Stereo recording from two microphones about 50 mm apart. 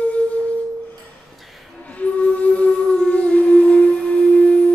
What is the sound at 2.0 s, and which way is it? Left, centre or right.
Music, left.